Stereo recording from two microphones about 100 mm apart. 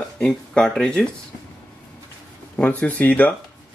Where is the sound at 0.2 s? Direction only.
10° left (ahead or behind).